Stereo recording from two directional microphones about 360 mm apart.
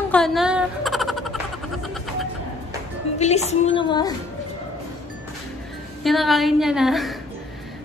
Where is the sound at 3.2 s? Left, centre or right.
Centre.